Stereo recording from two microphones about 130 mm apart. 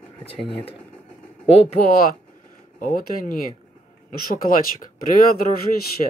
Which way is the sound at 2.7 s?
90° left.